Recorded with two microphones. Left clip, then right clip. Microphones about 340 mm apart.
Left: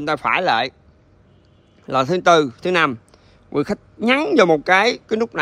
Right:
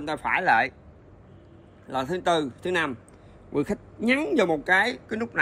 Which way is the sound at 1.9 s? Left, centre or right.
Centre.